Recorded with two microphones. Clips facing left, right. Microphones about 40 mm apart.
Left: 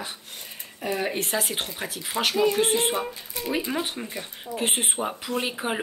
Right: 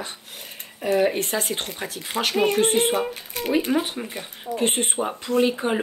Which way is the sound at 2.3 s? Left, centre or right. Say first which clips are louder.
Right 2 dB; right.